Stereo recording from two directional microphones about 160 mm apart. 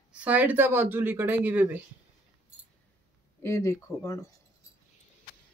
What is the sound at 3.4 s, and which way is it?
Speech, 15° left (ahead or behind).